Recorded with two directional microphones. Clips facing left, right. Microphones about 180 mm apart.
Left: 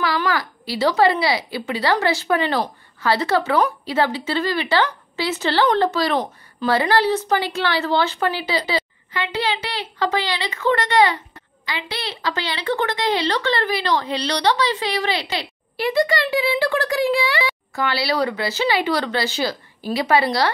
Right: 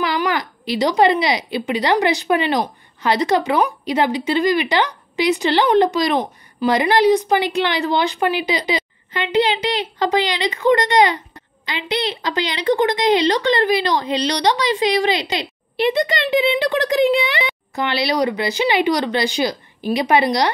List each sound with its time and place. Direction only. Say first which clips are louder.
0.0 s speech: right 1 dB; 20° right (ahead or behind)